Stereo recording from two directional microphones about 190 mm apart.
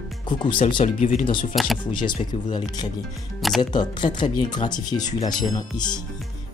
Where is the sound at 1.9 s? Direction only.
25° left (ahead or behind).